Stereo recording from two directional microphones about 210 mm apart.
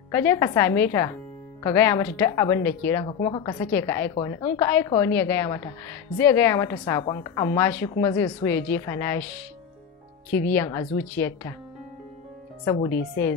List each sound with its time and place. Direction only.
0.1 s a woman's voice: 10° left (ahead or behind)
10.3 s a woman's voice: 10° left (ahead or behind)
12.6 s a woman's voice: 15° left (ahead or behind)